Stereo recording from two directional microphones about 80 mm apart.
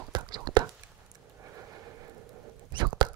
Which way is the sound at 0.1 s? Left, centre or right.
Right.